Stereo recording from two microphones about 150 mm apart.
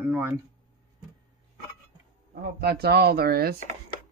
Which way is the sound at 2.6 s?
90° right.